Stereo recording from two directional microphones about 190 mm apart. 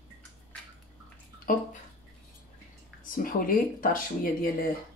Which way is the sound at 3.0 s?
45° left (ahead or behind).